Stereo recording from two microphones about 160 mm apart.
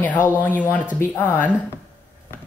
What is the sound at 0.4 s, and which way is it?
Speech, 10° left (ahead or behind).